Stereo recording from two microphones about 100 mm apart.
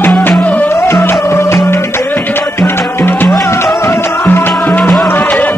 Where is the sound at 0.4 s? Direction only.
15° left (ahead or behind).